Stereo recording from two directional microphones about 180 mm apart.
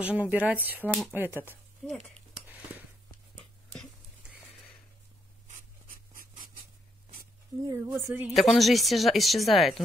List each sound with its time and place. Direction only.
0.0 s speech: 10° right (ahead or behind)
0.8 s speech: 5° left (ahead or behind)
1.1 s speech: 10° right (ahead or behind)
1.8 s speech: centre (ahead or behind)
5.5 s writing: 50° right (ahead or behind)
7.6 s speech: 15° right (ahead or behind)
8.3 s speech: centre (ahead or behind)